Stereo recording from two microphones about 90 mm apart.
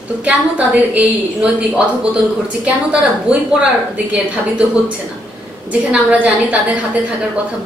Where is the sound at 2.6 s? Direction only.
10° right (ahead or behind).